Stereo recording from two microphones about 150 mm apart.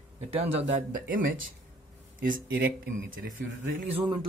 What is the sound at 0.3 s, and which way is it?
Speech, 45° right (ahead or behind).